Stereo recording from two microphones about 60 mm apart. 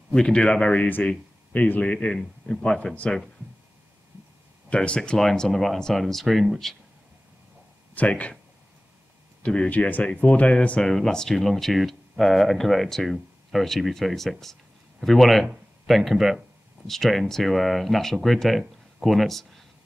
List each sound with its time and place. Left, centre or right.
0.1 s speech: centre
4.6 s speech: centre
7.9 s speech: left
9.4 s speech: centre
9.7 s speech: left
10.8 s speech: centre